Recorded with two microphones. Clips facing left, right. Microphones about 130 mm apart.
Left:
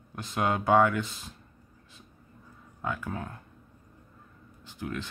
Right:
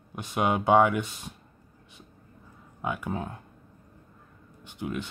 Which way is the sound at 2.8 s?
15° right (ahead or behind).